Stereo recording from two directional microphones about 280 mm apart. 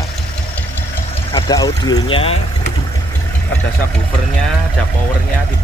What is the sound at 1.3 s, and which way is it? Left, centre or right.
Speech, centre.